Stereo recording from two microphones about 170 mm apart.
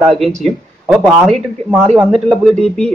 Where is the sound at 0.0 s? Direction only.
Centre (ahead or behind).